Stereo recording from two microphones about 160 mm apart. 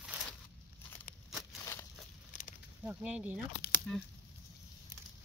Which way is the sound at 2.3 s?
55° left (ahead or behind).